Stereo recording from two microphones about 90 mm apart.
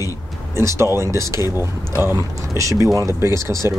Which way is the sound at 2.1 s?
35° right (ahead or behind).